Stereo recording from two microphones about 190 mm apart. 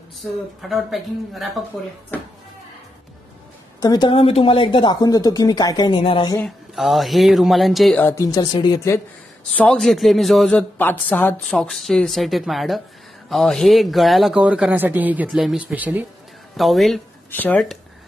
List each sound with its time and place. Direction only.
0.6 s a man's voice: centre (ahead or behind)
3.8 s a woman's voice: 20° left (ahead or behind)
6.4 s a man's voice: centre (ahead or behind)
8.1 s speech: 15° left (ahead or behind)
9.6 s a man's voice: 5° left (ahead or behind)